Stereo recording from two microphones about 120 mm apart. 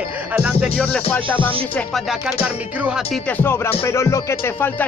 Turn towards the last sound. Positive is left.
turn(degrees=20)  # may be behind; listen again after turning